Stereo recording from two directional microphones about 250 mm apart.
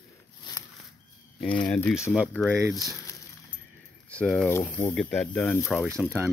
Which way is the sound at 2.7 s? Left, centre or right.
Centre.